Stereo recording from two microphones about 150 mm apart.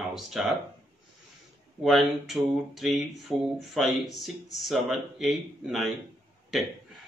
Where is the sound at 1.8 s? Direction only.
Centre (ahead or behind).